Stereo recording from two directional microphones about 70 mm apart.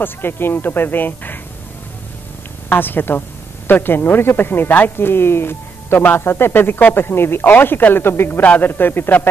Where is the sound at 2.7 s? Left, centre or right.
Left.